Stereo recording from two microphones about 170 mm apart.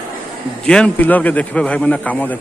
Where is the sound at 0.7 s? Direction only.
5° left (ahead or behind).